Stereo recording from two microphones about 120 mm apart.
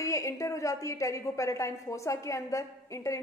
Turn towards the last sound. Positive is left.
turn(degrees=25)  # may be behind; listen again after turning